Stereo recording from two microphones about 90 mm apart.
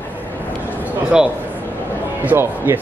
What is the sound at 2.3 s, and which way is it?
Speech, 25° right (ahead or behind).